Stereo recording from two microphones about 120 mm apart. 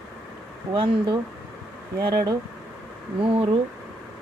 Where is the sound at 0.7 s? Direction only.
45° right (ahead or behind).